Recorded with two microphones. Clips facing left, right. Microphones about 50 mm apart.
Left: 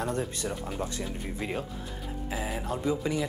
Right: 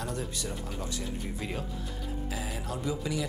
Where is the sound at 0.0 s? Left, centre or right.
Left.